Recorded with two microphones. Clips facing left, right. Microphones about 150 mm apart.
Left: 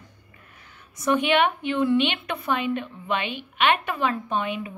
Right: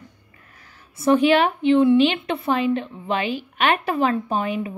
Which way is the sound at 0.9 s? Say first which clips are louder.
Right 5 dB; 30° right (ahead or behind).